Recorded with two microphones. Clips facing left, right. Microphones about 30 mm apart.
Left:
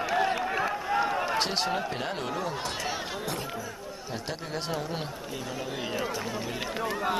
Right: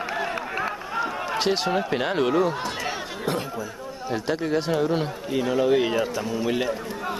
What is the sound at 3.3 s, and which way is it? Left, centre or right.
Speech, right.